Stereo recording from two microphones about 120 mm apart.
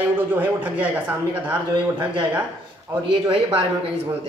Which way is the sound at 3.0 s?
45° right (ahead or behind).